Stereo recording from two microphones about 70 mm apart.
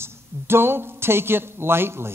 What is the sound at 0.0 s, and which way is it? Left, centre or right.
Speech, right.